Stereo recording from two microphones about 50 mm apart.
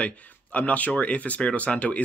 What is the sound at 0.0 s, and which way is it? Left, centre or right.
Speech, left.